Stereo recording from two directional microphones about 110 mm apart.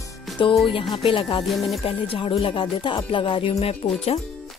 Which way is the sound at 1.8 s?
55° left (ahead or behind).